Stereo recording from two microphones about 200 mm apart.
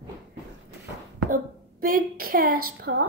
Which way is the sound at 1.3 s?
45° right (ahead or behind).